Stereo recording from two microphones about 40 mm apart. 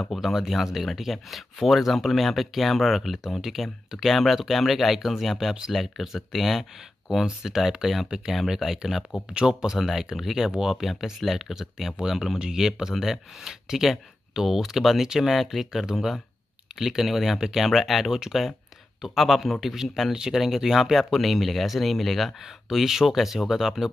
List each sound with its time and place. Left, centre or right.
0.2 s speech: centre
9.3 s speech: centre
9.8 s speech: centre